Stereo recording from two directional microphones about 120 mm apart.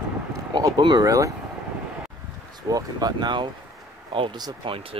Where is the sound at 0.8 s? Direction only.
40° right (ahead or behind).